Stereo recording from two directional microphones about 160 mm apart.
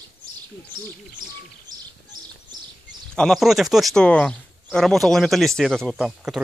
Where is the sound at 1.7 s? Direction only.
25° right (ahead or behind).